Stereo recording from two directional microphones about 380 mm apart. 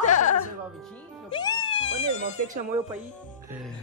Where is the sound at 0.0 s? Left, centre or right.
Centre.